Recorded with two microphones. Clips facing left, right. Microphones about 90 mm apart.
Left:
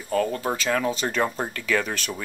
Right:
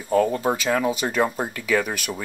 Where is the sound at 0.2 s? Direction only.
15° right (ahead or behind).